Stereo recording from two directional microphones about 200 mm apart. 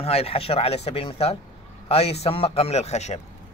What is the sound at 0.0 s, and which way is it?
A man's voice, 30° left (ahead or behind).